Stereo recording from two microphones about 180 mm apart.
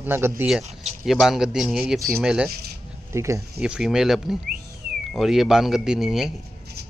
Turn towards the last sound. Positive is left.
turn(degrees=0)  # may be behind; listen again after turning